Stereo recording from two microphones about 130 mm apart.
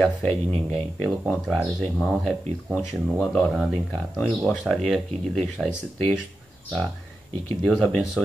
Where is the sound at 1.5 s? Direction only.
Centre (ahead or behind).